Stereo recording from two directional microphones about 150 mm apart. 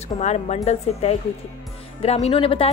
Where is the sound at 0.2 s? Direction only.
45° left (ahead or behind).